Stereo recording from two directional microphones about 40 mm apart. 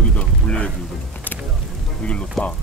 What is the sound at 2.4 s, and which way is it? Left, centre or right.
Speech, centre.